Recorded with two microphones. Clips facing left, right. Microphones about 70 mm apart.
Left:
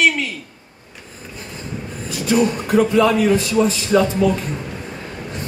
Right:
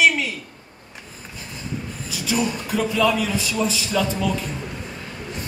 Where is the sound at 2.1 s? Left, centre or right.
Left.